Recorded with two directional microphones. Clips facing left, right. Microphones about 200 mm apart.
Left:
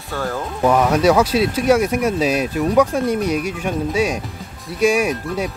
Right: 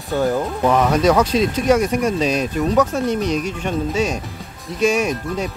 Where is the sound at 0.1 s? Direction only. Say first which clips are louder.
Right 6 dB; 20° right (ahead or behind).